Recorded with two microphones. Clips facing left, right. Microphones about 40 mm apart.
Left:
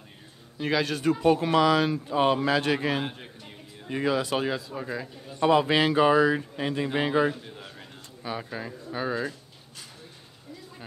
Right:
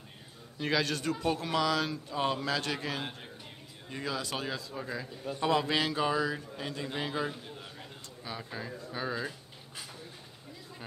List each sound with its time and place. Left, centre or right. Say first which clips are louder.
0.6 s speech: left 4 dB; centre
1.1 s speech: left 11 dB; left
4.6 s speech: left 5 dB; centre
5.7 s speech: left 9 dB; left
7.4 s speech: left 2 dB; centre